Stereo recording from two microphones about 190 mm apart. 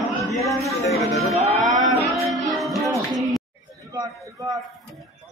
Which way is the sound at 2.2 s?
Centre (ahead or behind).